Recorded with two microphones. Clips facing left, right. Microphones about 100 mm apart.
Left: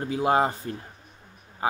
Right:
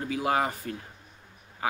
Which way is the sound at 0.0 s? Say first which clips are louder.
Left 4 dB; 30° left (ahead or behind).